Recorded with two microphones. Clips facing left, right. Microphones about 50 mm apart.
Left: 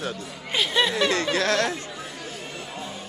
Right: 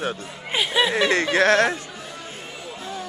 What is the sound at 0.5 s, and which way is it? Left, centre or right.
Speech, centre.